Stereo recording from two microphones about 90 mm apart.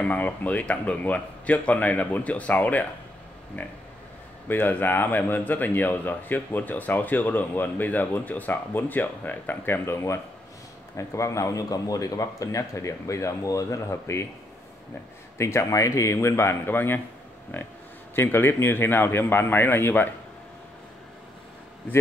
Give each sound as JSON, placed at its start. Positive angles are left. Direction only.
{"t": 0.0, "sound": "a man's voice", "side_deg": 15}
{"t": 11.0, "sound": "speech", "side_deg": 35}
{"t": 15.3, "sound": "a man's voice", "side_deg": 30}